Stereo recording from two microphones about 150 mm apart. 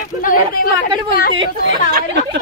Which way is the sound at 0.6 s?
70° left (ahead or behind).